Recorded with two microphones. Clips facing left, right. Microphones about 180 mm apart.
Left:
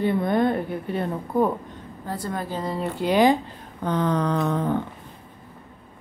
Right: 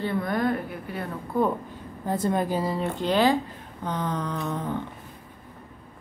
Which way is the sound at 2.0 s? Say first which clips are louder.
Right 5 dB; 20° right (ahead or behind).